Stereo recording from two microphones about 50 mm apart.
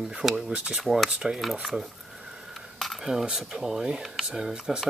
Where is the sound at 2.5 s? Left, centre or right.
Centre.